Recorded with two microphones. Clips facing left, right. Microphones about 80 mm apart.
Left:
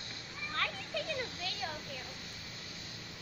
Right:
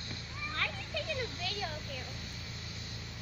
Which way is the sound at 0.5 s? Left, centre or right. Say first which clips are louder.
Left 1 dB; left.